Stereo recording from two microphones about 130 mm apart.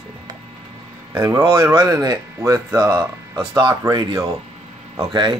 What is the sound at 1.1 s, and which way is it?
Speech, 20° right (ahead or behind).